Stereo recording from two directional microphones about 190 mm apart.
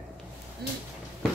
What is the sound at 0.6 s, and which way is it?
Speech, 60° right (ahead or behind).